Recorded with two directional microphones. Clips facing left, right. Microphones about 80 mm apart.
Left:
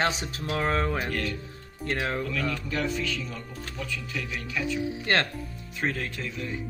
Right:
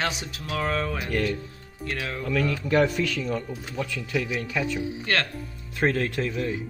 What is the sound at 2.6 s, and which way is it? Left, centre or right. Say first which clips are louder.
Speech: right 7 dB; right.